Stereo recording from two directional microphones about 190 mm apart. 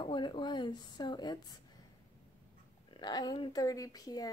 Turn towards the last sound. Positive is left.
turn(degrees=20)  # may be behind; listen again after turning